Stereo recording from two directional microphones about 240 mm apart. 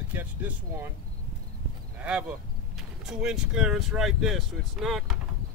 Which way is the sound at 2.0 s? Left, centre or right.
Centre.